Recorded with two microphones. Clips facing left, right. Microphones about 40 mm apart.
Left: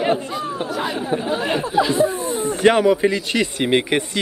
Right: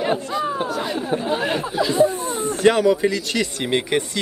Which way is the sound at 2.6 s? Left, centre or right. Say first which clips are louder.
Left 1 dB; left.